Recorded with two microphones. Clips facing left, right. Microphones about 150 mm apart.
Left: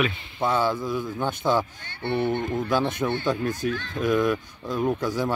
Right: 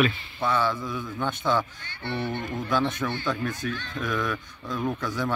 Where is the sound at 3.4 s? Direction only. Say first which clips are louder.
Left 4 dB; 40° left (ahead or behind).